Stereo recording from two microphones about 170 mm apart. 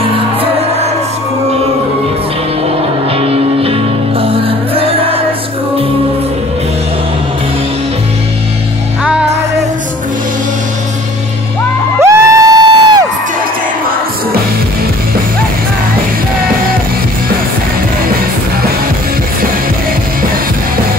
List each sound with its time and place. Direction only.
3.2 s music: 35° right (ahead or behind)
9.0 s music: 5° right (ahead or behind)
12.0 s a sound: 20° right (ahead or behind)